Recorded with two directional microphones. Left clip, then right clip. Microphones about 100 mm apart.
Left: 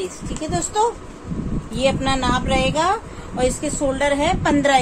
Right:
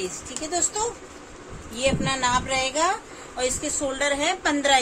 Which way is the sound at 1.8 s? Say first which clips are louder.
Left 4 dB; 90° left.